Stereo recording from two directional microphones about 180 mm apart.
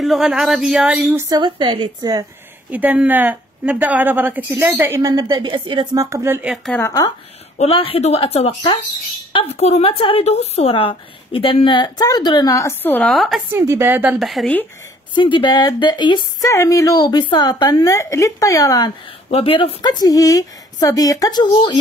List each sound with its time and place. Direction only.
0.0 s speech: centre (ahead or behind)
1.1 s speech: 25° right (ahead or behind)
2.7 s a woman's voice: 10° right (ahead or behind)
6.5 s speech: centre (ahead or behind)
6.8 s a woman's voice: 20° left (ahead or behind)
7.5 s a woman's voice: 30° left (ahead or behind); by 13.4 s centre (ahead or behind)
13.5 s a woman's voice: 15° right (ahead or behind)
14.1 s speech: centre (ahead or behind)
15.1 s a woman's voice: 25° left (ahead or behind)
19.3 s a woman's voice: 30° left (ahead or behind)